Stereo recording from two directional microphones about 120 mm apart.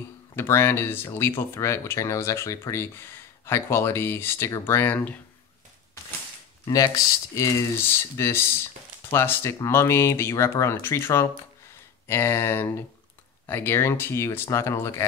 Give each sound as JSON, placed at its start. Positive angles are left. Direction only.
{"t": 0.4, "sound": "speech", "side_deg": 20}
{"t": 7.3, "sound": "speech", "side_deg": 25}